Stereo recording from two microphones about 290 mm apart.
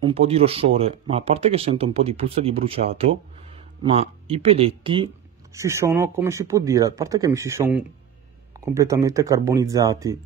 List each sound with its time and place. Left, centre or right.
0.0 s speech: centre